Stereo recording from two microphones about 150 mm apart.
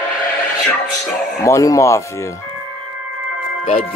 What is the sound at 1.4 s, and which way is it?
Speech, 20° left (ahead or behind).